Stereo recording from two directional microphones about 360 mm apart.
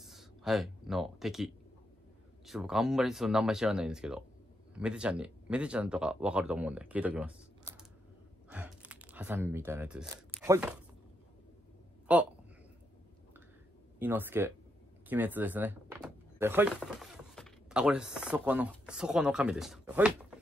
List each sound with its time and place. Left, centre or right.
0.0 s a sound: centre
2.4 s speech: centre
8.5 s a sound: centre
9.7 s speech: centre
12.1 s speech: centre
13.9 s speech: centre